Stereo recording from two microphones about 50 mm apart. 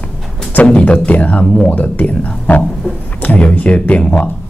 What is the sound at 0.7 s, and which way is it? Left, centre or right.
Speech, left.